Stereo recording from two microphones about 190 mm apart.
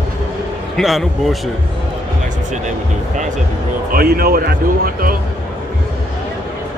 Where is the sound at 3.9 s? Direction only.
50° right (ahead or behind).